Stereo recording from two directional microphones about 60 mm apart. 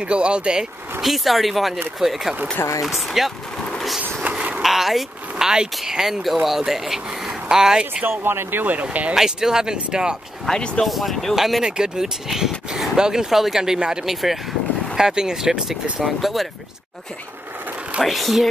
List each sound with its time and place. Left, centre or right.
0.0 s speech: centre
1.0 s speech: centre
4.2 s a sound: right
4.6 s speech: centre
7.8 s speech: right
9.1 s speech: centre
10.4 s speech: centre
10.9 s speech: centre
16.2 s speech: centre
18.0 s speech: centre